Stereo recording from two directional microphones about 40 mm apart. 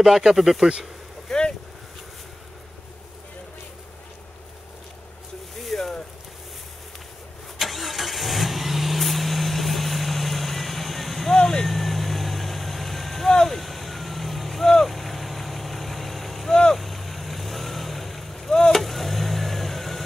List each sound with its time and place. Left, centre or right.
0.0 s speech: centre
5.6 s a sound: centre
7.5 s vehicle: centre
11.3 s vehicle: centre
11.6 s vehicle: centre
18.5 s vehicle: centre
18.8 s vehicle: centre